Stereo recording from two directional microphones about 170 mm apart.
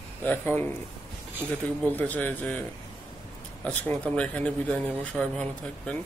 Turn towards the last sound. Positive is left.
turn(degrees=5)  # may be behind; listen again after turning